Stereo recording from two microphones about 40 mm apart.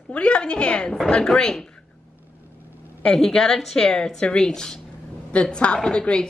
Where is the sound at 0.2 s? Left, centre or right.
Left.